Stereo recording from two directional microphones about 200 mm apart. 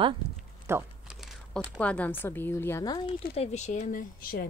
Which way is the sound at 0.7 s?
10° right (ahead or behind).